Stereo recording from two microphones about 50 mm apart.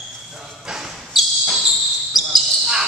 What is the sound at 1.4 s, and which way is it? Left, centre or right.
Basketball bounce, centre.